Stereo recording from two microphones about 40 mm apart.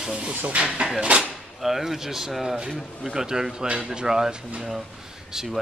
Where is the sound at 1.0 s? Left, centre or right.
Right.